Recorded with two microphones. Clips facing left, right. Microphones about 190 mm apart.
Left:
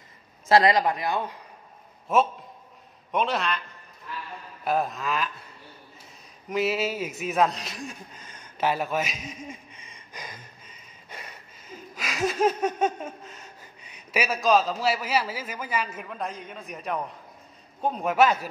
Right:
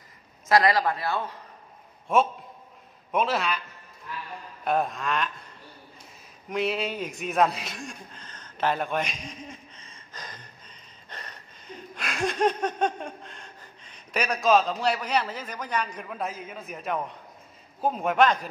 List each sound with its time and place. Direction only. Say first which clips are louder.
0.5 s a man's voice: left 2 dB; 25° left (ahead or behind)
2.1 s a man's voice: even; centre (ahead or behind)
4.6 s a man's voice: even; centre (ahead or behind)
6.5 s a man's voice: left 2 dB; 5° left (ahead or behind)